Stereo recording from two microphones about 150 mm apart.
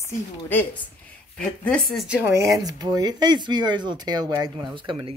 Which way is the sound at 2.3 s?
25° right (ahead or behind).